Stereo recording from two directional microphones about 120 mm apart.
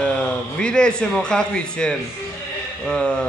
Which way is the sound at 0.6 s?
10° left (ahead or behind).